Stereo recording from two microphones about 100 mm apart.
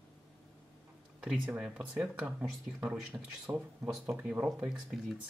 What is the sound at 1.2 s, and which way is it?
Speech, 10° right (ahead or behind).